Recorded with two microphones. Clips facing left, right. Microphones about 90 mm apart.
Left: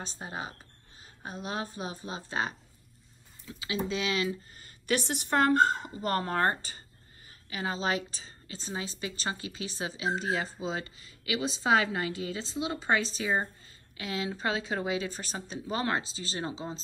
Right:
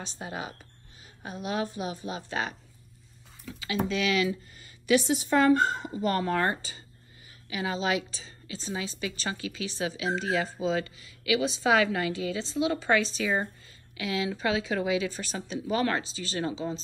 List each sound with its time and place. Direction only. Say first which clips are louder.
0.0 s a woman's voice: right 2 dB; 35° left (ahead or behind)